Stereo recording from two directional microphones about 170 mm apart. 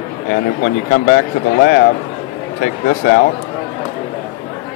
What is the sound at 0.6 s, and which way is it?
Speech, 55° left (ahead or behind).